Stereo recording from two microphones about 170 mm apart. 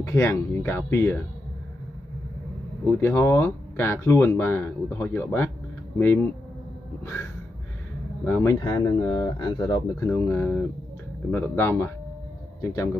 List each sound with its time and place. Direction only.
0.0 s speech: 15° left (ahead or behind)
2.9 s speech: 15° left (ahead or behind)
8.3 s speech: 15° left (ahead or behind)
10.0 s speech: 15° left (ahead or behind)